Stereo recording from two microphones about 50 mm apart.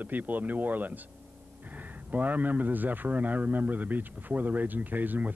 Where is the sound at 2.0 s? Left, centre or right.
Right.